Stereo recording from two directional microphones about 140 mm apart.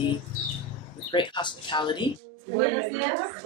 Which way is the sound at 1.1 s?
35° left (ahead or behind).